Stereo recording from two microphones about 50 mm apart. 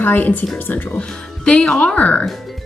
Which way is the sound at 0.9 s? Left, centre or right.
Centre.